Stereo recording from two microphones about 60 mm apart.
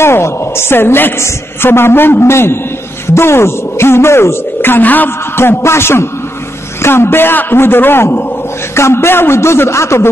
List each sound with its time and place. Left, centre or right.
0.0 s a man's voice: left